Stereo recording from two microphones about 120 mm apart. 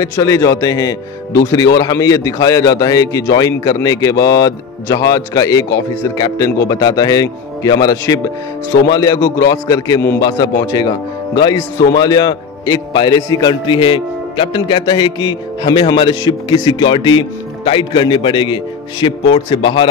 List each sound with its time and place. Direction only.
0.0 s a man's voice: 30° left (ahead or behind); by 19.9 s 45° left (ahead or behind)